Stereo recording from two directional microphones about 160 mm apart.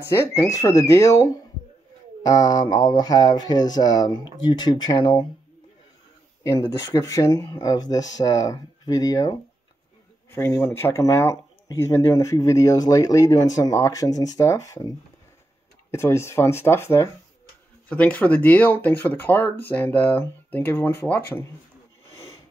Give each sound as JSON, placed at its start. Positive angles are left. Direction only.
{"t": 0.1, "sound": "speech", "side_deg": 15}
{"t": 6.4, "sound": "speech", "side_deg": 20}
{"t": 15.9, "sound": "speech", "side_deg": 15}